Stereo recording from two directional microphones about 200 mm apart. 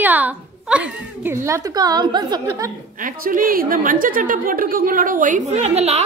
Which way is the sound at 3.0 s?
45° right (ahead or behind).